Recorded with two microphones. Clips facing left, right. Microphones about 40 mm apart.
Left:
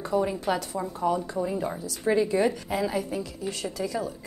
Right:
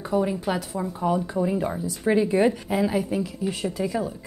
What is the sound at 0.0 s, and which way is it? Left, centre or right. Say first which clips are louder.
Speech: right 2 dB; centre.